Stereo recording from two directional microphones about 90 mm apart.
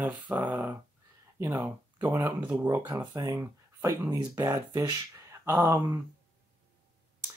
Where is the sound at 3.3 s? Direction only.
25° right (ahead or behind).